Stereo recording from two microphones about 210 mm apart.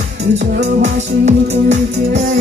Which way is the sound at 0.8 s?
35° right (ahead or behind).